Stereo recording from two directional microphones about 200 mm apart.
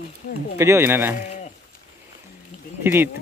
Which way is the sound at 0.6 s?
15° right (ahead or behind).